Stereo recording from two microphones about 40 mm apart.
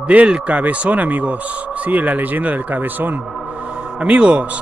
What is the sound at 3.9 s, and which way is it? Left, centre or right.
Speech, right.